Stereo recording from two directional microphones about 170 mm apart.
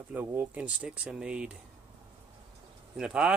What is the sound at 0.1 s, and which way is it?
Speech, 10° right (ahead or behind).